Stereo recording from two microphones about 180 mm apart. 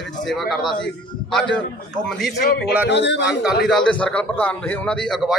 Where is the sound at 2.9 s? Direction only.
75° left (ahead or behind).